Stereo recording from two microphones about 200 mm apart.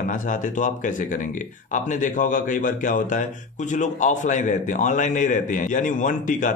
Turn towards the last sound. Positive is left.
turn(degrees=40)  # may be behind; listen again after turning